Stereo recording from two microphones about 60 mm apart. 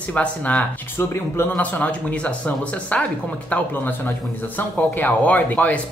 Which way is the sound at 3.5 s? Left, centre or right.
Left.